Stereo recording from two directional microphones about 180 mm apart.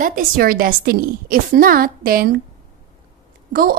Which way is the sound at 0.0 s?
50° right (ahead or behind).